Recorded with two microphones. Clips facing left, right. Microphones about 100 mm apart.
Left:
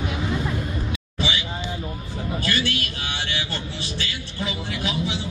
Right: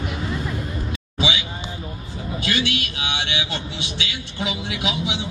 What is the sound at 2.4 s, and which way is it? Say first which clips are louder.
A man's voice: right 3 dB; 80° right.